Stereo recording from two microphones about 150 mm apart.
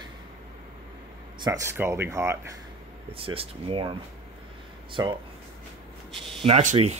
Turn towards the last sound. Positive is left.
turn(degrees=-45)  # may be behind; listen again after turning